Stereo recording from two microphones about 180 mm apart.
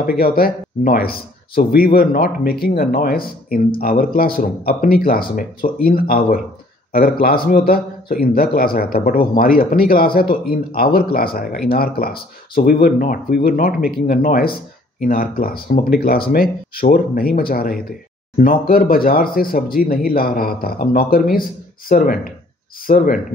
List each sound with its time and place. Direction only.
0.2 s speech: 55° left (ahead or behind)